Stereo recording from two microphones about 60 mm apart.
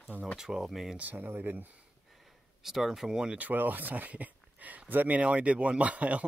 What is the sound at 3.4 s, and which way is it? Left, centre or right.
Speech, right.